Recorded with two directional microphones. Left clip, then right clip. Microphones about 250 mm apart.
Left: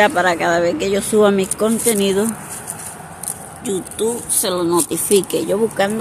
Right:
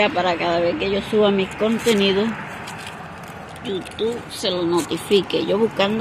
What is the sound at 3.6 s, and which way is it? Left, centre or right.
Speech, left.